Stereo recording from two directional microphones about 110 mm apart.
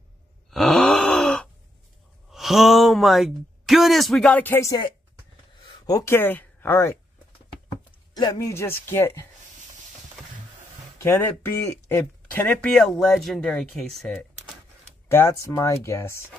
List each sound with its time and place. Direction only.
0.5 s groan: 5° left (ahead or behind)
2.3 s speech: centre (ahead or behind)
4.3 s music: 15° left (ahead or behind)
5.9 s speech: 35° left (ahead or behind)
6.1 s speech: 20° left (ahead or behind)
8.1 s speech: 35° left (ahead or behind); by 9.2 s 20° left (ahead or behind)
11.0 s speech: 20° left (ahead or behind)
12.7 s speech: 5° left (ahead or behind)
15.0 s speech: 20° left (ahead or behind)